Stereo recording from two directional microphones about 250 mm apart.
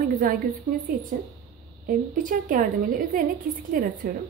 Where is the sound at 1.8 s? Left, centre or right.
Right.